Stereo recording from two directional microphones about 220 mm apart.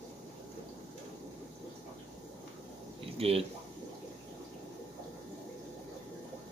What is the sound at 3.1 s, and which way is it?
Speech, 25° right (ahead or behind).